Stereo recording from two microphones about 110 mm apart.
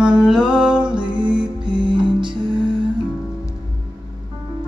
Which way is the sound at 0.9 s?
45° right (ahead or behind).